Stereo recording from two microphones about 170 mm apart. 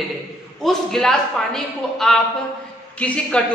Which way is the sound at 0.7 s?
Centre (ahead or behind).